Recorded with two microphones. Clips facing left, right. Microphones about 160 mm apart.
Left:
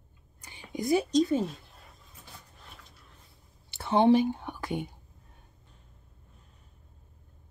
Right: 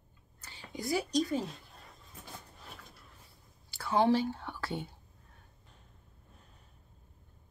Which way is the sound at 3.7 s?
20° left (ahead or behind).